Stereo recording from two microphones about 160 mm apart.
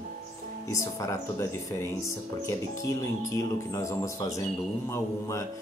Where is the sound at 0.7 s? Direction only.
20° left (ahead or behind).